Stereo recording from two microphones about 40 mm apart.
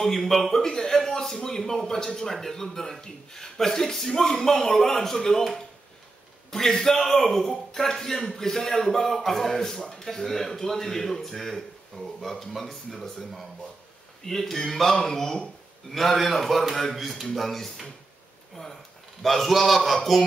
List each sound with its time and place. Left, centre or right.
0.0 s a man's voice: centre
6.7 s a man's voice: centre
19.2 s a man's voice: centre